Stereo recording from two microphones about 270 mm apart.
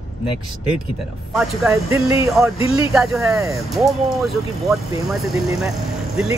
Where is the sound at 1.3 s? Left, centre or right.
Centre.